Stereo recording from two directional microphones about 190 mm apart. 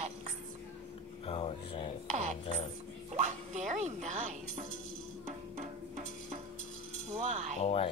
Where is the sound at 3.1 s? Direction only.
40° right (ahead or behind).